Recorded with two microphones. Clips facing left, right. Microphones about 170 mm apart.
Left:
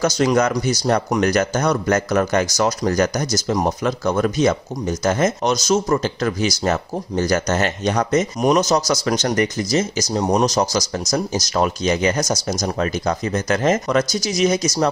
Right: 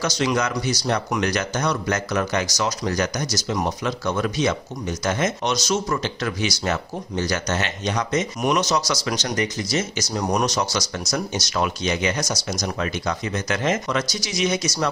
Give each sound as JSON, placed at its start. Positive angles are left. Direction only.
{"t": 0.0, "sound": "speech", "side_deg": 45}
{"t": 9.8, "sound": "speech", "side_deg": 35}
{"t": 10.4, "sound": "speech", "side_deg": 40}